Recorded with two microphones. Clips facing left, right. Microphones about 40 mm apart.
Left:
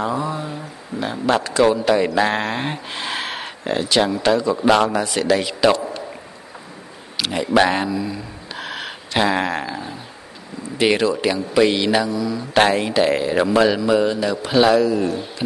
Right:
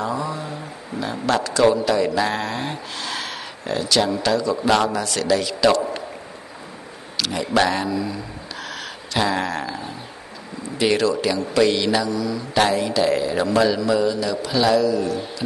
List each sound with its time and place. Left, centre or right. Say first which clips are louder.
0.0 s a sound: left 2 dB; left
1.1 s a man's voice: left 3 dB; left
7.2 s a man's voice: left 3 dB; centre
7.9 s a man's voice: left 1 dB; centre
8.5 s a sound: left 4 dB; left
10.8 s a man's voice: left 2 dB; left
12.5 s a man's voice: left 3 dB; left